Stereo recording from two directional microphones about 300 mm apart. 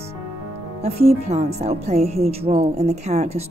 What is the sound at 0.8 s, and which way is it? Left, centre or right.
Speech, right.